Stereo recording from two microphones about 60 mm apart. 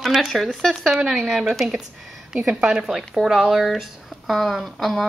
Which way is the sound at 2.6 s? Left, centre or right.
Centre.